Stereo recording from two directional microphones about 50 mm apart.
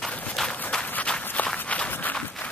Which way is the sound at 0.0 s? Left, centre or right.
Centre.